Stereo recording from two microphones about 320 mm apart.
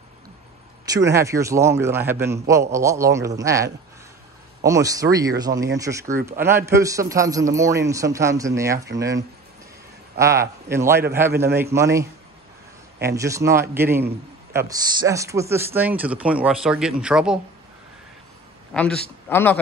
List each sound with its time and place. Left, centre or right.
0.9 s a man's voice: centre
18.7 s a man's voice: centre